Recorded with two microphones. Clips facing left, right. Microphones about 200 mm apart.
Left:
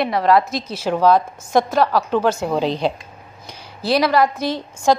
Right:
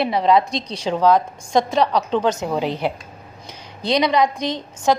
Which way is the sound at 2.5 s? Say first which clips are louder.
Left 2 dB; 10° right (ahead or behind).